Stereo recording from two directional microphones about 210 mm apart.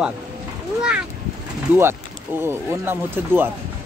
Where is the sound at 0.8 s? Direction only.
5° right (ahead or behind).